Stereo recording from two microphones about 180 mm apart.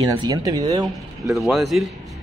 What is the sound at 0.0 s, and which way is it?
Speech, 20° right (ahead or behind).